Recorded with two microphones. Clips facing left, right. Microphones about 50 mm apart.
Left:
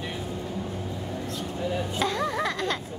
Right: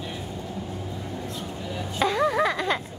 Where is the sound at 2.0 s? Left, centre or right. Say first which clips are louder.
Right 7 dB; centre.